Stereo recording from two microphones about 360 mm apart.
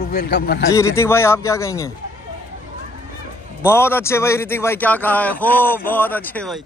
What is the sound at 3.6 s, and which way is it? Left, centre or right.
A man's voice, centre.